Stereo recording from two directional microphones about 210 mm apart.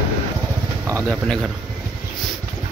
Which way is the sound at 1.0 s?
5° left (ahead or behind).